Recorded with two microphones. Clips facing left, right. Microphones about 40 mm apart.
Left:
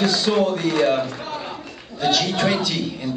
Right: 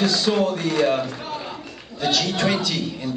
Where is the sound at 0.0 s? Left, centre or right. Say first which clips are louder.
Left 1 dB; centre.